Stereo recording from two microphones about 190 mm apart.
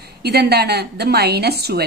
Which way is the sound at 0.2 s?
55° right (ahead or behind).